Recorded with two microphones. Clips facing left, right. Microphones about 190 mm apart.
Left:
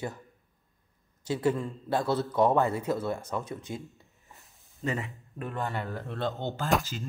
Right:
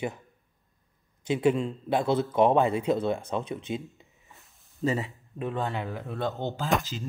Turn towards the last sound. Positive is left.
turn(degrees=0)  # may be behind; listen again after turning